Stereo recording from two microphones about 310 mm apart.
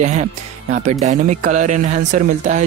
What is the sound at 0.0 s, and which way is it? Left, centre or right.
Speech, right.